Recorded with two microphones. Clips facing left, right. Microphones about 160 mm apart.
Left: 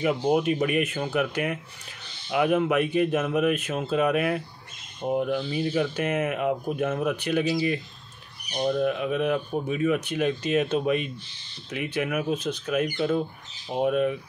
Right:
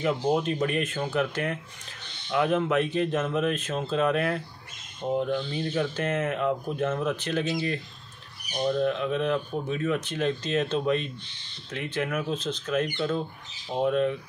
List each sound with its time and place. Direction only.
0.0 s speech: 10° left (ahead or behind)
8.7 s speech: 10° left (ahead or behind)